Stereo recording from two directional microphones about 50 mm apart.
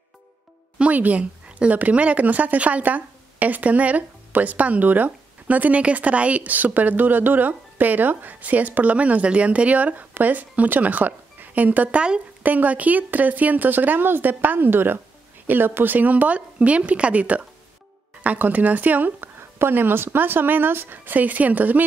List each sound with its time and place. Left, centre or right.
0.7 s a woman's voice: right